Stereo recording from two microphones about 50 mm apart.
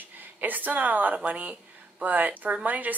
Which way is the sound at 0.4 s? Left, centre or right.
Right.